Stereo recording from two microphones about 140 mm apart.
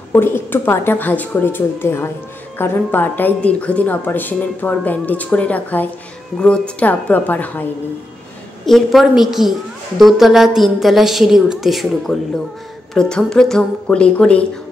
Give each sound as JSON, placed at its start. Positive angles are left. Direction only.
{"t": 0.1, "sound": "a woman's voice", "side_deg": 15}
{"t": 8.6, "sound": "a woman's voice", "side_deg": 0}